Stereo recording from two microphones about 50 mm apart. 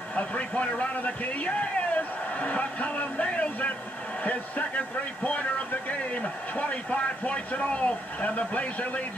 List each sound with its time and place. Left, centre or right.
0.1 s a man's voice: left